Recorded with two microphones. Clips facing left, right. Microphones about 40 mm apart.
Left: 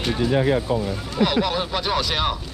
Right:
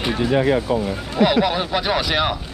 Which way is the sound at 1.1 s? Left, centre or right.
Centre.